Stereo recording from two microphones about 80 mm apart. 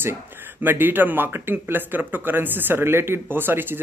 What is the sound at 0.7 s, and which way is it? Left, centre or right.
Speech, right.